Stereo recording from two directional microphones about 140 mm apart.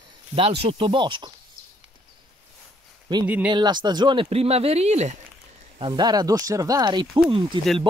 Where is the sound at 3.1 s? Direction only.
35° right (ahead or behind); by 5.1 s 50° right (ahead or behind).